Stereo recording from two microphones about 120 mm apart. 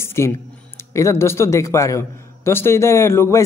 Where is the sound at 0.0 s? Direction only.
20° left (ahead or behind).